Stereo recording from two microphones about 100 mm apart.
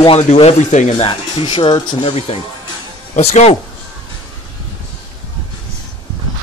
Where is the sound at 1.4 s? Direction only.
55° left (ahead or behind); by 3.5 s 90° left.